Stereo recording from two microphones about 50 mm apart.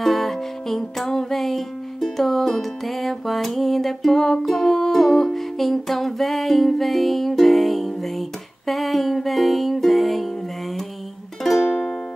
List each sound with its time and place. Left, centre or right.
0.0 s music: centre